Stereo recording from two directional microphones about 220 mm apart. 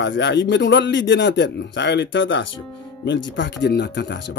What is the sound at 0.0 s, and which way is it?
Speech, 55° left (ahead or behind).